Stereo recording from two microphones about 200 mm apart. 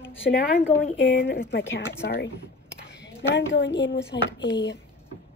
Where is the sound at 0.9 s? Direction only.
65° left (ahead or behind).